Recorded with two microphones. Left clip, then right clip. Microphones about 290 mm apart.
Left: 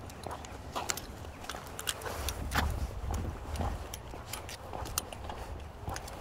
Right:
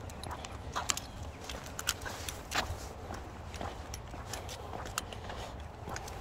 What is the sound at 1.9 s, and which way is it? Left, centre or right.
Clip-clop, centre.